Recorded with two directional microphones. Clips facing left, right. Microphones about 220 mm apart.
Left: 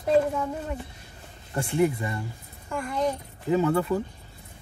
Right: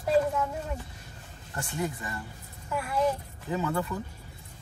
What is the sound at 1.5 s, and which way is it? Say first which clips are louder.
Speech: left 9 dB; 25° left (ahead or behind).